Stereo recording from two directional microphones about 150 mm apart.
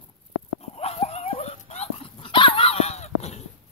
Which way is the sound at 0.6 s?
45° left (ahead or behind).